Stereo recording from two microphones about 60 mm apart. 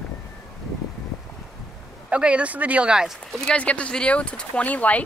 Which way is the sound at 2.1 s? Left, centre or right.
Centre.